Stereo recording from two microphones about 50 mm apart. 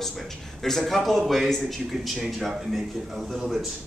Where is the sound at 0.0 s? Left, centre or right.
Centre.